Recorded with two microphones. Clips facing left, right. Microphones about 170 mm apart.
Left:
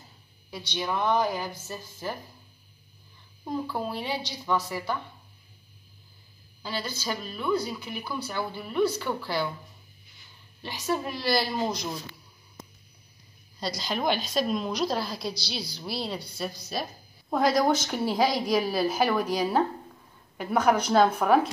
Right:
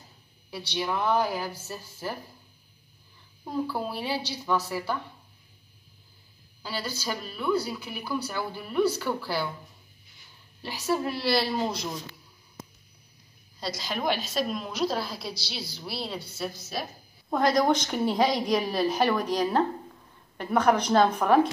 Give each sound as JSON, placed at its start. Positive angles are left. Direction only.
{"t": 0.7, "sound": "speech", "side_deg": -5}
{"t": 3.4, "sound": "speech", "side_deg": -5}
{"t": 6.6, "sound": "speech", "side_deg": -10}
{"t": 10.6, "sound": "a woman's voice", "side_deg": -10}
{"t": 13.6, "sound": "a woman's voice", "side_deg": 0}
{"t": 17.3, "sound": "a woman's voice", "side_deg": 5}